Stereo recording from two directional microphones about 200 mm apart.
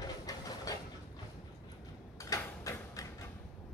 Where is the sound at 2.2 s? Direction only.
15° left (ahead or behind).